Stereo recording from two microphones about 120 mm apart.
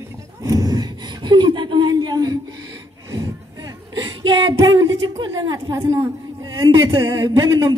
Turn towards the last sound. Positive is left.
turn(degrees=-35)  # may be behind; listen again after turning